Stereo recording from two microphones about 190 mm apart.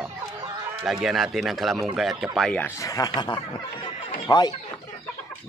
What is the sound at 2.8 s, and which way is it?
Speech, 15° left (ahead or behind).